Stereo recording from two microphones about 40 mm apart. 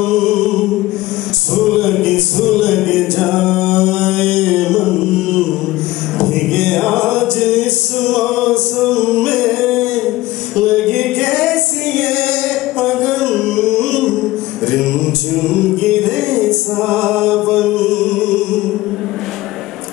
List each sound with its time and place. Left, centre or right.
0.0 s music: centre
6.1 s mantra: centre
13.0 s music: centre